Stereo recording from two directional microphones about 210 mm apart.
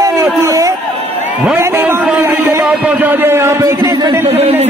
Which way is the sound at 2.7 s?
5° right (ahead or behind).